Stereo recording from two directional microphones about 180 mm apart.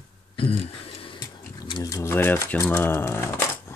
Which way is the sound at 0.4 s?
30° left (ahead or behind).